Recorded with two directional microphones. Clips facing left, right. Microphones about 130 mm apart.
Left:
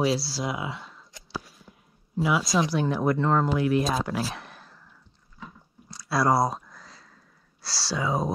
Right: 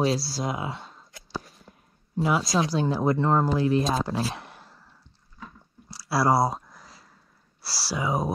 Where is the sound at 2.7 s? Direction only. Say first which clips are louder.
Right 1 dB; 30° right (ahead or behind).